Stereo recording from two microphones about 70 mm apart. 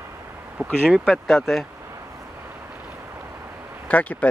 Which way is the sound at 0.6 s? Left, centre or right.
Right.